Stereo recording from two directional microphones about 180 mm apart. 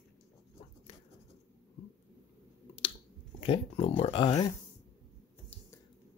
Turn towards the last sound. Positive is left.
turn(degrees=25)  # may be behind; listen again after turning